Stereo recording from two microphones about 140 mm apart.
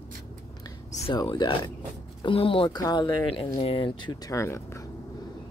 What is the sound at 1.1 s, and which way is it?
Speech, 35° left (ahead or behind).